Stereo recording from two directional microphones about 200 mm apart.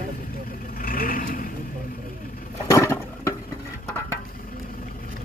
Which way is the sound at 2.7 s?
15° left (ahead or behind).